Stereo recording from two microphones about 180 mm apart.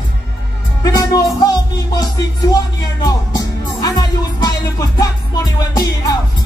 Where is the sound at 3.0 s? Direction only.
20° left (ahead or behind).